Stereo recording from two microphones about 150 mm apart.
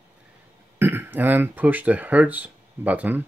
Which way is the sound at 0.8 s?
15° right (ahead or behind).